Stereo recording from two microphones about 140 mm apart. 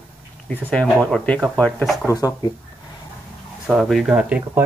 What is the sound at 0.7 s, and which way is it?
Speech, 10° left (ahead or behind).